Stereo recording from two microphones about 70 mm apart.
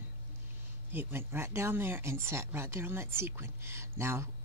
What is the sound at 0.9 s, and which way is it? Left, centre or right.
Speech, right.